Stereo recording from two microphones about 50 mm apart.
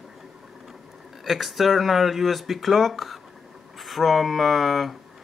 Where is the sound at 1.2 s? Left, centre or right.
Centre.